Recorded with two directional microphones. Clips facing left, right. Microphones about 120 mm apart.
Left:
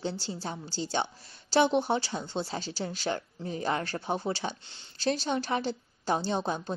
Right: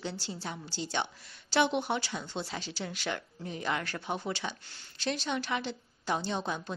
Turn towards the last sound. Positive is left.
turn(degrees=35)  # may be behind; listen again after turning